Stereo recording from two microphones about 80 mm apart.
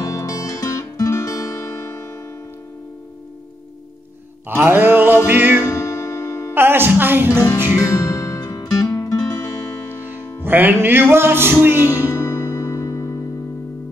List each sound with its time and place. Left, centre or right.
0.0 s music: left
4.5 s music: right
5.7 s music: left
6.5 s music: right
7.8 s music: left
9.3 s music: left
10.4 s music: right
11.8 s music: left